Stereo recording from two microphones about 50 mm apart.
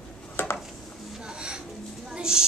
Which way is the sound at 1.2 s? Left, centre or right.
Centre.